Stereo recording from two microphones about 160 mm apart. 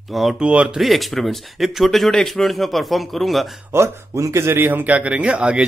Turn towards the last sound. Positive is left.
turn(degrees=-5)  # may be behind; listen again after turning